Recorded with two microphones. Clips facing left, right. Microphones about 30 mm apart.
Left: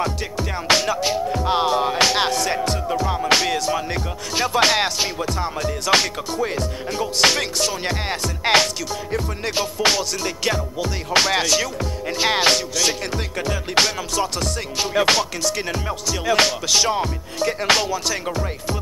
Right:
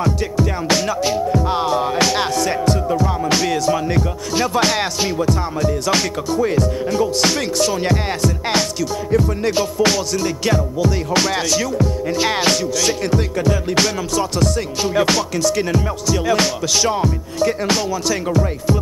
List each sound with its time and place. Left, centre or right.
0.0 s music: left
1.3 s music: left
3.0 s music: left
5.2 s music: left
6.4 s music: left
7.6 s music: centre
8.5 s music: left
9.1 s music: left
10.1 s music: left
10.5 s music: left
11.4 s music: left
12.2 s music: left
17.4 s music: left
18.1 s music: centre